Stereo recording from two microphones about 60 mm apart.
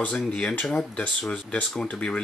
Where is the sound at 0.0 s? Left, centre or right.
Left.